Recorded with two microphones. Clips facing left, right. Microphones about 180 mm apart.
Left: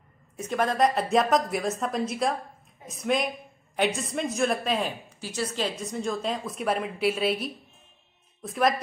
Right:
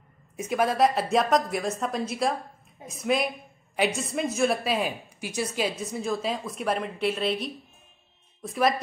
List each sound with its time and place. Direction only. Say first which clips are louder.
0.4 s a woman's voice: right 1 dB; 10° right (ahead or behind)